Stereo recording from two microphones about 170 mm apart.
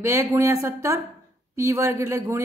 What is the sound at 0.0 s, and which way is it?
A man's voice, 15° right (ahead or behind).